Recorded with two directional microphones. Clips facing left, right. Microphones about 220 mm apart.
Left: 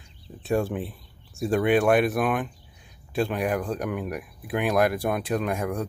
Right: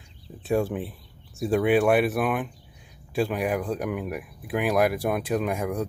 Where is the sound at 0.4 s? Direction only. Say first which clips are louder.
Even; 5° right (ahead or behind).